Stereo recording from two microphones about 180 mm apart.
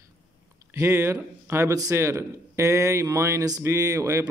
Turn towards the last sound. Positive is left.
turn(degrees=-15)  # may be behind; listen again after turning